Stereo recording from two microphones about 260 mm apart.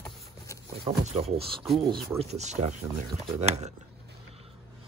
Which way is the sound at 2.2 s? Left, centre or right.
Right.